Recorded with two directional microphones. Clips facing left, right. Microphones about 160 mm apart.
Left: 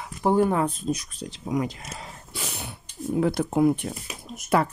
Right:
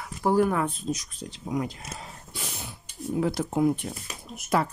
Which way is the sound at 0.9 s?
65° left (ahead or behind).